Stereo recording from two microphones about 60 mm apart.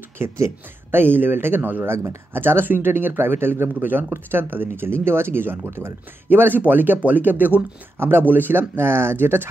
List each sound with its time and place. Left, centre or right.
0.2 s speech: right
6.2 s speech: right